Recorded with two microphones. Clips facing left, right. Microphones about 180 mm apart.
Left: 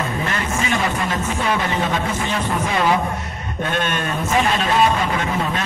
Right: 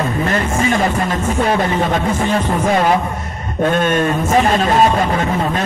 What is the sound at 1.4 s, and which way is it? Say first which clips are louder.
Speech: right 6 dB; 45° right (ahead or behind).